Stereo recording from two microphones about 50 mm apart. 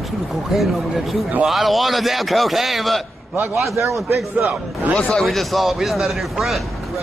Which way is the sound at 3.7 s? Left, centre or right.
Right.